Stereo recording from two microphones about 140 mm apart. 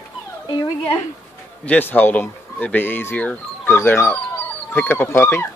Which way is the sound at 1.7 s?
15° left (ahead or behind).